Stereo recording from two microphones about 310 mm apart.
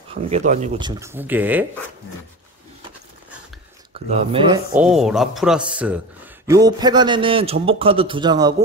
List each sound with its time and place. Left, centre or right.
0.5 s a man's voice: centre
4.1 s a man's voice: centre
4.7 s a man's voice: centre